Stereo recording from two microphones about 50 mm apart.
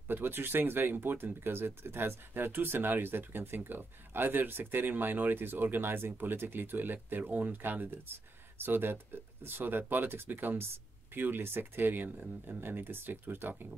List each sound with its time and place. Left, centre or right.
0.1 s speech: right